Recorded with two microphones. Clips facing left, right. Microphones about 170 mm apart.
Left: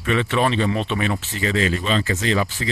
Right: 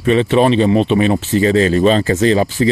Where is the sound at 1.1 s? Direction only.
35° right (ahead or behind).